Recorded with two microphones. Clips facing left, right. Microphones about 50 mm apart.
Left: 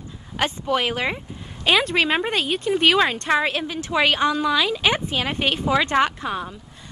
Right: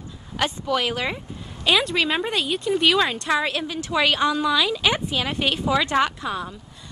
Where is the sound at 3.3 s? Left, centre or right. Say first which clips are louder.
Left 2 dB; left.